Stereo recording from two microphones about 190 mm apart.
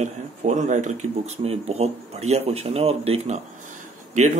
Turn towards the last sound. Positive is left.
turn(degrees=-40)  # may be behind; listen again after turning